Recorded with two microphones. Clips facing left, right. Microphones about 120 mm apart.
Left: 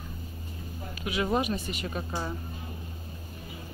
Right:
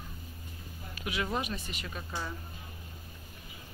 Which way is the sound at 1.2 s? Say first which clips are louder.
Left 7 dB; 15° left (ahead or behind).